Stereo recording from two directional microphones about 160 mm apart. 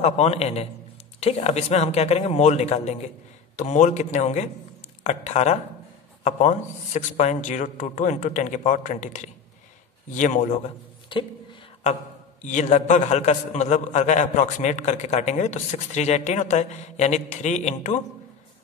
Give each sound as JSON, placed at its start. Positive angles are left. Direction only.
{"t": 0.0, "sound": "a man's voice", "side_deg": 40}
{"t": 12.4, "sound": "a man's voice", "side_deg": 45}